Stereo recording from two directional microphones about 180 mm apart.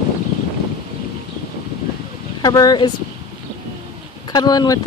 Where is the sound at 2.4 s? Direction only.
20° left (ahead or behind).